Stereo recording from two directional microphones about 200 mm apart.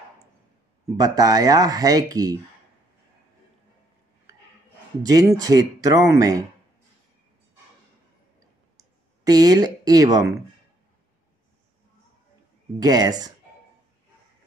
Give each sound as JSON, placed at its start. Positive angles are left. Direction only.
{"t": 0.9, "sound": "speech", "side_deg": -20}
{"t": 5.0, "sound": "speech", "side_deg": -15}
{"t": 8.7, "sound": "speech", "side_deg": -20}
{"t": 12.7, "sound": "speech", "side_deg": -20}